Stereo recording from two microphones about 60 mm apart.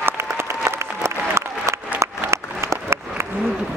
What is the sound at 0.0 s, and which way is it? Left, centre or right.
Applause, right.